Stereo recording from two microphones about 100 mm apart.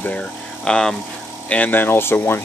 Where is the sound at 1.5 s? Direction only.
20° left (ahead or behind).